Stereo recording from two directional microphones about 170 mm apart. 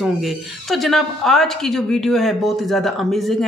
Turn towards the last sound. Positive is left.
turn(degrees=0)  # may be behind; listen again after turning